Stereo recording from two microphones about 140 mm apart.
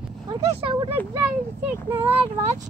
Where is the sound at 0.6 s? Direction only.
40° right (ahead or behind).